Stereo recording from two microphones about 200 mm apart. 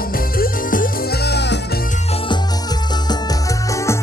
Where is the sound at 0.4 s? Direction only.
45° left (ahead or behind).